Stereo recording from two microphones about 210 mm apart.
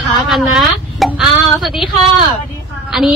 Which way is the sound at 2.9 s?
Centre (ahead or behind).